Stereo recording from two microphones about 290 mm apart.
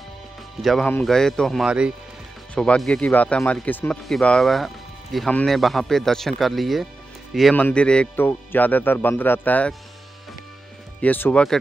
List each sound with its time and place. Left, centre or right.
0.6 s speech: centre
11.0 s speech: centre